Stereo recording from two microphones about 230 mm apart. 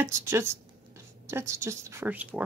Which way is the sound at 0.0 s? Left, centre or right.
Centre.